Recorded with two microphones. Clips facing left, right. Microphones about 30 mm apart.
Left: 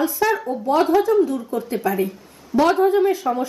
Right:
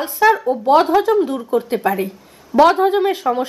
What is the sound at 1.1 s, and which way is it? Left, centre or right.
Speech, right.